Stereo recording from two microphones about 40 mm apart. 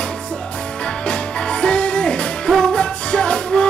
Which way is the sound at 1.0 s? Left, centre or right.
Left.